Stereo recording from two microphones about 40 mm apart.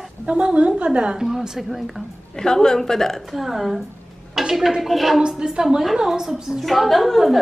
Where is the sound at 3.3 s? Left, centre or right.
Centre.